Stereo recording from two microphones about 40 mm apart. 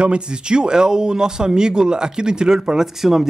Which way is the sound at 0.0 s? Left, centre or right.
Right.